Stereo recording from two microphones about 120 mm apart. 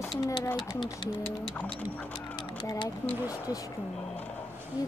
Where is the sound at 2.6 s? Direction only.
35° left (ahead or behind).